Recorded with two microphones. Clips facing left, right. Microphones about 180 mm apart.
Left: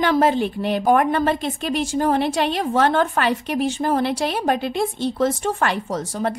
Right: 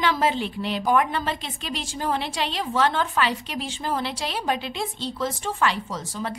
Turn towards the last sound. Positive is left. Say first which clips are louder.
# left 7 dB
turn(degrees=65)  # may be behind; listen again after turning